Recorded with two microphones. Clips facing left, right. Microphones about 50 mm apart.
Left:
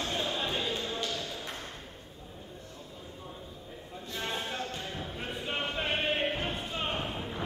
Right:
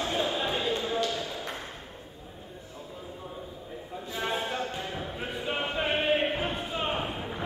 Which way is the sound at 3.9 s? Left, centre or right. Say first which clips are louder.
Right 4 dB; centre.